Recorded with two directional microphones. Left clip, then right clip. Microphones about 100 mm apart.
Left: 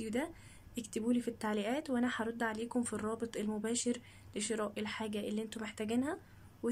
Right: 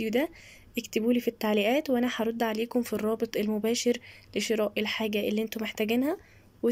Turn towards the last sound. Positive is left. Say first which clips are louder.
# right 11 dB
turn(degrees=-25)  # may be behind; listen again after turning